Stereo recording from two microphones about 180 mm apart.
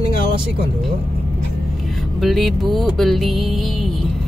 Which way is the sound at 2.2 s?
Centre (ahead or behind).